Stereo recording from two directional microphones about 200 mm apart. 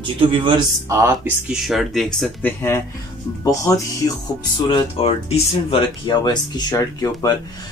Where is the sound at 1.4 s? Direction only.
Centre (ahead or behind); by 4.1 s 15° left (ahead or behind).